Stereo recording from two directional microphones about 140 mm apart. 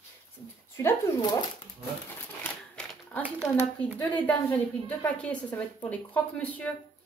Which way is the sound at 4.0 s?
10° left (ahead or behind).